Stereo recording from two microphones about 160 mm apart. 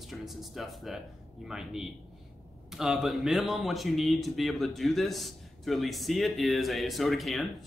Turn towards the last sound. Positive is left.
turn(degrees=0)  # may be behind; listen again after turning